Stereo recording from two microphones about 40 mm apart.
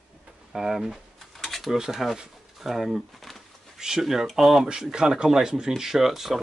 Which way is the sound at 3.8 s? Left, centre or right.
Centre.